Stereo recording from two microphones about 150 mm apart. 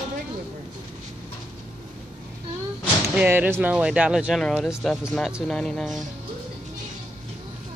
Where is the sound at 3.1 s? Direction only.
10° right (ahead or behind).